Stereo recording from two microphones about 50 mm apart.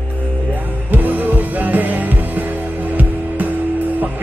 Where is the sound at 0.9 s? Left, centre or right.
Right.